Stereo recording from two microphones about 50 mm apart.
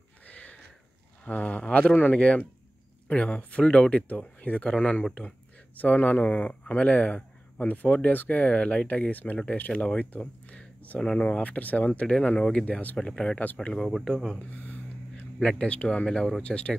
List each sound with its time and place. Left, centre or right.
0.3 s a sound: left
1.2 s speech: left
5.8 s speech: left
6.2 s speech: left
12.9 s speech: centre
14.5 s a sound: left
15.4 s speech: left